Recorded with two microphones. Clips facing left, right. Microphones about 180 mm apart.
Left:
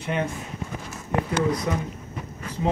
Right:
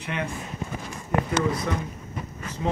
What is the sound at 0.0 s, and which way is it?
Speech, 30° left (ahead or behind).